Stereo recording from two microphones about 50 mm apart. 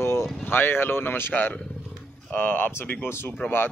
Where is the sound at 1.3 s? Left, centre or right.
Left.